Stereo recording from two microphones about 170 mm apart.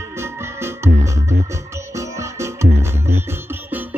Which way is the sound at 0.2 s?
15° right (ahead or behind).